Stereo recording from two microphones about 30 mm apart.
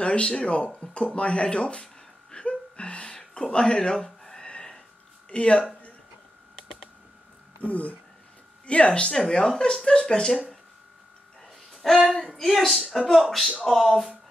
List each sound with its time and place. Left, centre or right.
0.0 s speech: left
2.3 s music: left
3.1 s a sound: left
3.5 s speech: left
5.3 s speech: left
6.5 s computer keyboard: centre
7.6 s speech: left
8.6 s speech: left
9.3 s speech: left
11.4 s music: centre
12.1 s a woman's voice: centre